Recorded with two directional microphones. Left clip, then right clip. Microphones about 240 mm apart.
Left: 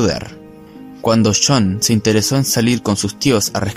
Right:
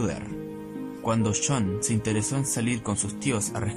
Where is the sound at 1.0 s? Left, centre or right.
Left.